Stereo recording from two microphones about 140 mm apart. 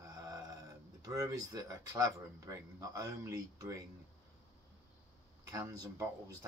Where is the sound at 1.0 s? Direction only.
25° right (ahead or behind).